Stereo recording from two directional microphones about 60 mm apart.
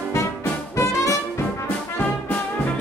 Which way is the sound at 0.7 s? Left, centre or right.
Left.